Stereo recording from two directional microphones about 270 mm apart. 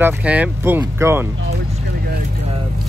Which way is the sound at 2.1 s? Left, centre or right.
Right.